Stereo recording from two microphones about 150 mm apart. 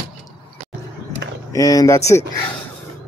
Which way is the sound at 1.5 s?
25° left (ahead or behind).